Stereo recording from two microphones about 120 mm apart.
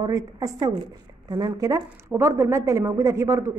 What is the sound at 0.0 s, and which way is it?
A woman's voice, 30° right (ahead or behind).